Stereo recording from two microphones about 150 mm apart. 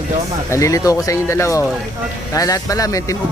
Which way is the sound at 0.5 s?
20° left (ahead or behind).